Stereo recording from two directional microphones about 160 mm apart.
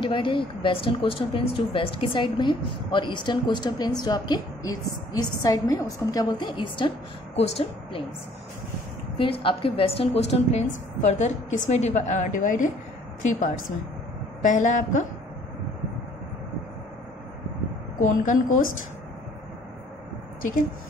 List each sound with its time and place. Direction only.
0.0 s a woman's voice: 30° left (ahead or behind)
9.2 s a woman's voice: 30° left (ahead or behind); by 12.7 s 55° left (ahead or behind)
14.4 s a woman's voice: 50° left (ahead or behind)
18.0 s a woman's voice: 50° left (ahead or behind)